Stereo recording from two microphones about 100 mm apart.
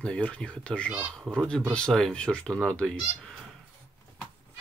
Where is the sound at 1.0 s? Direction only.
15° right (ahead or behind).